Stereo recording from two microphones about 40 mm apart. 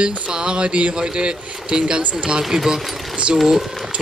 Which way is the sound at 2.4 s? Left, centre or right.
Centre.